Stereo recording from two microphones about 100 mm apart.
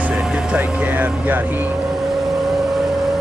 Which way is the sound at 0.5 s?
15° right (ahead or behind).